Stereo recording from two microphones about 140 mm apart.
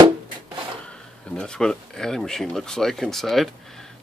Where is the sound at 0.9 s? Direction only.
5° left (ahead or behind).